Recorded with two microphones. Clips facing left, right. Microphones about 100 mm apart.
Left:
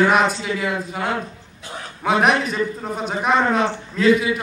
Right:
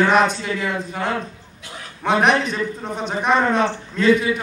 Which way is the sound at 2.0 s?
5° left (ahead or behind).